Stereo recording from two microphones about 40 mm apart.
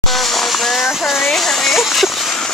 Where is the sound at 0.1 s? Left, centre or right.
Centre.